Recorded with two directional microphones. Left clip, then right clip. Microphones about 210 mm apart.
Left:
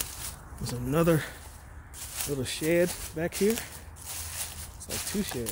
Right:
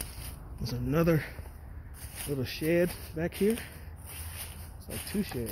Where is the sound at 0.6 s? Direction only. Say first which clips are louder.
Left 2 dB; 15° left (ahead or behind).